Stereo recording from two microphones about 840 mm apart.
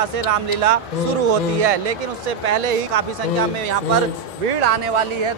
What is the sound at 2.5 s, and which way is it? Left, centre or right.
Speech, right.